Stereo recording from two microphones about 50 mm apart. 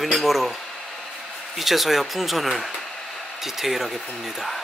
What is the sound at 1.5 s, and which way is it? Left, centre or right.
Speech, centre.